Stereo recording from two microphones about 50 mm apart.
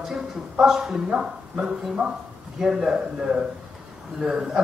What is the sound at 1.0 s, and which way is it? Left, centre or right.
Speech, right.